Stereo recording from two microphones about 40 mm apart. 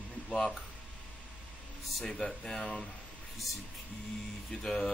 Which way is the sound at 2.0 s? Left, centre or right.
Centre.